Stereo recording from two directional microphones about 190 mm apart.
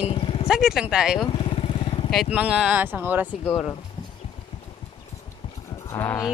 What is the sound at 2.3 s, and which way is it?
Speech, 5° right (ahead or behind).